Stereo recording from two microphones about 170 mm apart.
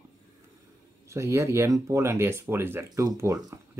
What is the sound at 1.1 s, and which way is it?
Speech, 15° right (ahead or behind).